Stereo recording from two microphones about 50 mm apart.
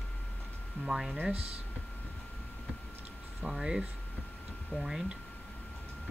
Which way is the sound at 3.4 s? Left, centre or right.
Centre.